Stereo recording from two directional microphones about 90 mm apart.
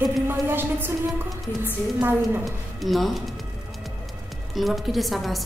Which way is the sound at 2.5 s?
Centre (ahead or behind).